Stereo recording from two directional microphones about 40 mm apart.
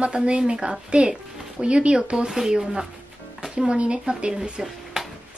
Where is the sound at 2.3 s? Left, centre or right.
Centre.